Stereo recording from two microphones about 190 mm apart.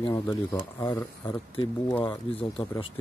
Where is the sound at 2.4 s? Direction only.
30° left (ahead or behind).